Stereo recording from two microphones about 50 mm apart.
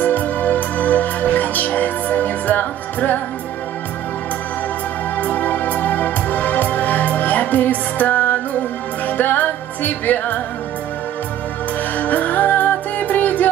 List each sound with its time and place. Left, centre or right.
0.0 s music: left
5.1 s music: left
12.0 s music: left